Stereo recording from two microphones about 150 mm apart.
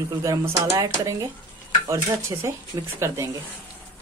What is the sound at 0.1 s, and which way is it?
Speech, 20° right (ahead or behind).